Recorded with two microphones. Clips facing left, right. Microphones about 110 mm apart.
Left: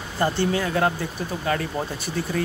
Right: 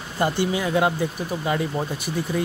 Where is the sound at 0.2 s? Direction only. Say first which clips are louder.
Even; 15° right (ahead or behind).